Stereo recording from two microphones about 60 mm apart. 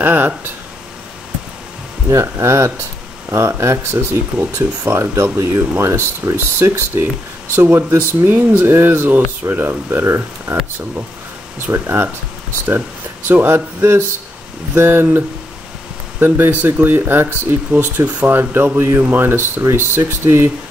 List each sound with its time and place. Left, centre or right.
0.0 s a sound: right
2.0 s speech: right
11.7 s speech: right
13.3 s speech: right